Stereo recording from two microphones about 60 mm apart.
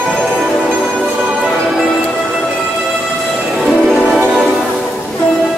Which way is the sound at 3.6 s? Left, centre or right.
Centre.